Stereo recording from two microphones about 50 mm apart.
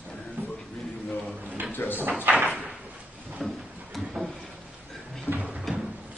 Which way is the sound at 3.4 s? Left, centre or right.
Centre.